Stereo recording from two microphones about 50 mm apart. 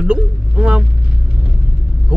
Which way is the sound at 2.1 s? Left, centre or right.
Right.